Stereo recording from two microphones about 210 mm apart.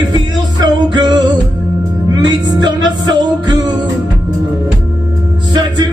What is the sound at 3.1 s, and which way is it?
Music, 20° right (ahead or behind).